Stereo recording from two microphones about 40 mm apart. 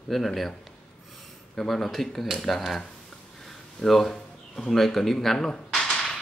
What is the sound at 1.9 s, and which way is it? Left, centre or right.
Speech, centre.